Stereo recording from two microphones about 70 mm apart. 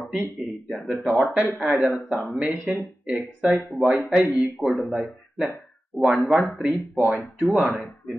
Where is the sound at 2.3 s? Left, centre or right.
Right.